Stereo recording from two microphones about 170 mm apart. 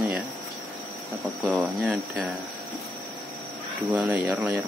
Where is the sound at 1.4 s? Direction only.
5° right (ahead or behind).